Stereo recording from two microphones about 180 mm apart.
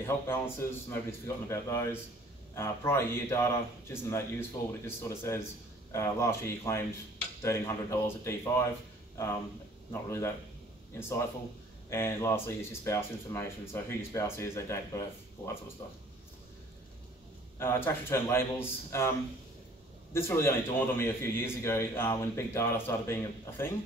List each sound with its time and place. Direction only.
0.0 s a man's voice: 15° left (ahead or behind)
10.0 s a man's voice: 15° left (ahead or behind)
17.6 s a man's voice: 15° left (ahead or behind)